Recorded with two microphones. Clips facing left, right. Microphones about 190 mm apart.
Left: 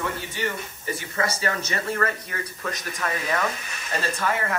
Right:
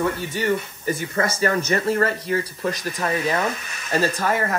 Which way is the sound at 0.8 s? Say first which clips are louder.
Right 2 dB; 45° right (ahead or behind).